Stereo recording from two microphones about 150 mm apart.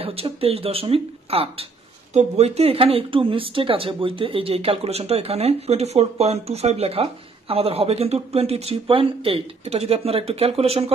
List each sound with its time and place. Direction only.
0.0 s speech: 40° right (ahead or behind)